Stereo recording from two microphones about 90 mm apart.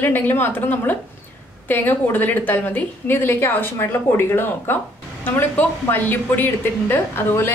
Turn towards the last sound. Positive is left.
turn(degrees=25)  # may be behind; listen again after turning